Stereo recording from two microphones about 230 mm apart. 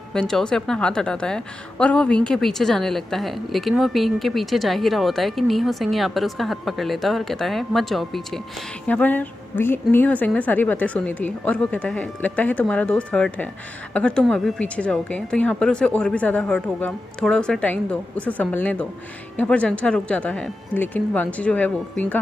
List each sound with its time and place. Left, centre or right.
0.1 s a woman's voice: centre